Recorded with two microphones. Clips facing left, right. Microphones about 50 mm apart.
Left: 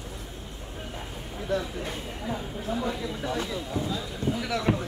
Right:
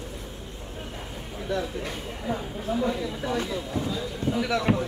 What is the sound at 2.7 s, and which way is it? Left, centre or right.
A man's voice, centre.